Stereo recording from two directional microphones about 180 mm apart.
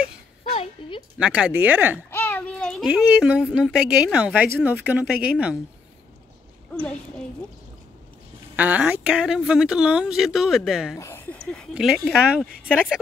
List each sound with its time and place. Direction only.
0.5 s a sound: 30° left (ahead or behind)
1.1 s speech: 5° right (ahead or behind)
2.0 s a sound: 10° left (ahead or behind)
2.9 s speech: 5° right (ahead or behind)
6.7 s a woman's voice: 5° left (ahead or behind)
8.5 s speech: 10° right (ahead or behind)
11.0 s speech: 15° left (ahead or behind); by 13.0 s 5° right (ahead or behind)